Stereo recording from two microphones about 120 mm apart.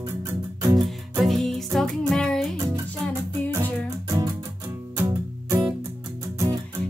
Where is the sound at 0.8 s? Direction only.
Centre (ahead or behind).